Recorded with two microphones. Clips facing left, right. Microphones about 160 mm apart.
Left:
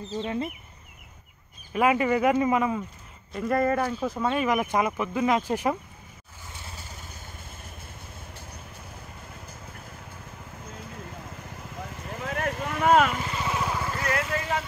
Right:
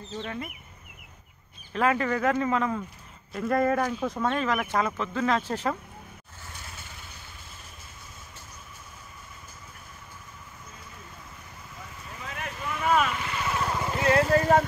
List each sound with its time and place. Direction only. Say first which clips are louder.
1.7 s speech: left 3 dB; 15° left (ahead or behind)
3.3 s speech: even; centre (ahead or behind)
10.7 s vehicle: left 7 dB; 60° left (ahead or behind)
13.1 s vehicle: left 1 dB; 30° left (ahead or behind)
13.4 s vehicle: even; 10° left (ahead or behind)
13.7 s vehicle: right 5 dB; 20° right (ahead or behind); by 14.6 s 40° right (ahead or behind)